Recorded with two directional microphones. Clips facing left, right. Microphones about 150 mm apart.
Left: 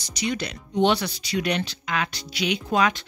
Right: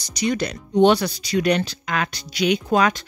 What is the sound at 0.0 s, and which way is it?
Speech, 40° right (ahead or behind).